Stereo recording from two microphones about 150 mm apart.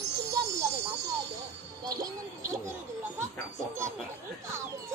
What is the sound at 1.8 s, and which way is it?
Music, 25° right (ahead or behind).